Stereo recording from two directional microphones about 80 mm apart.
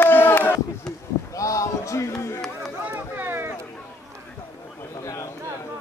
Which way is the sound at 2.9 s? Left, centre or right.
Right.